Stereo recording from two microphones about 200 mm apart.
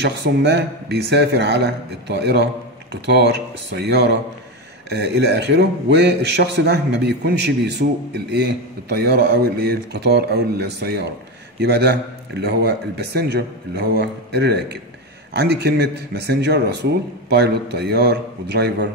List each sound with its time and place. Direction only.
0.0 s a man's voice: 55° right (ahead or behind)